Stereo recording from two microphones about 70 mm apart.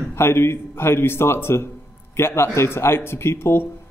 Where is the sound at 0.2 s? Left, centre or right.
Left.